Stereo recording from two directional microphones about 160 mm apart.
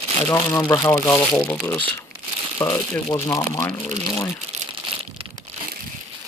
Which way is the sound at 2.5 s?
25° left (ahead or behind).